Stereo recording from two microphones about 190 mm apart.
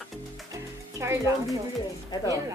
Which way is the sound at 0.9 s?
15° right (ahead or behind).